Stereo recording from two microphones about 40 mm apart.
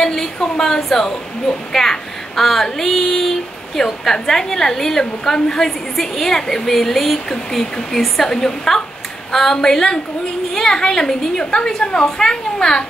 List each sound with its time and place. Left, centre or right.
0.0 s female singing: centre